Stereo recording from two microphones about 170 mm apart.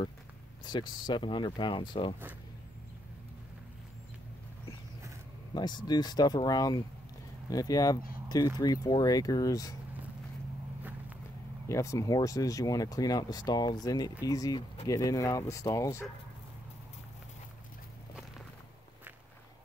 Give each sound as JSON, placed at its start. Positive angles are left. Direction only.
{"t": 0.7, "sound": "speech", "side_deg": 25}
{"t": 5.5, "sound": "speech", "side_deg": 25}
{"t": 10.8, "sound": "walk", "side_deg": -10}
{"t": 11.7, "sound": "speech", "side_deg": 20}